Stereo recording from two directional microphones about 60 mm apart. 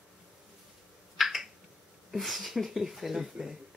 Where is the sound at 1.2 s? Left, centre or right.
Centre.